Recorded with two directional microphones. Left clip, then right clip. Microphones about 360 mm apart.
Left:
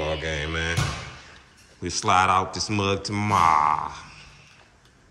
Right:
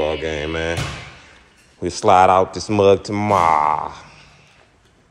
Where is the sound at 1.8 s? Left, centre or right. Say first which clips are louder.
Right 8 dB; centre.